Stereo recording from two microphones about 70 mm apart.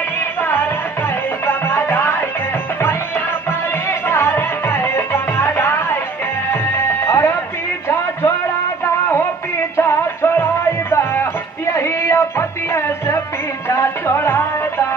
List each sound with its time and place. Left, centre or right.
0.4 s music: left
4.1 s music: left
9.8 s music: left